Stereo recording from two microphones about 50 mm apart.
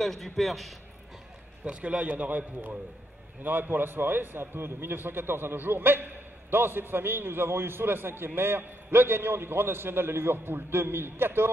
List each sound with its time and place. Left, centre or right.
0.0 s a man's voice: centre
1.6 s a man's voice: right